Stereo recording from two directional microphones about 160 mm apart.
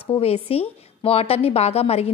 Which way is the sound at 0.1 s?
40° left (ahead or behind).